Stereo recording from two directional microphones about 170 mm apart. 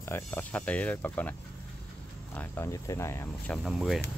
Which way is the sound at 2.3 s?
15° left (ahead or behind).